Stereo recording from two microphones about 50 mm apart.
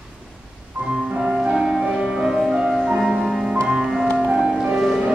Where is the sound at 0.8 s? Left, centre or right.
Centre.